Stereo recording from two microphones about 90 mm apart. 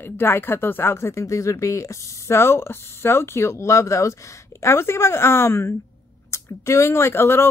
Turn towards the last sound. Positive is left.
turn(degrees=25)  # may be behind; listen again after turning